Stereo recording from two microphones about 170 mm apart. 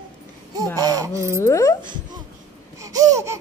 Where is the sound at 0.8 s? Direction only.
20° right (ahead or behind).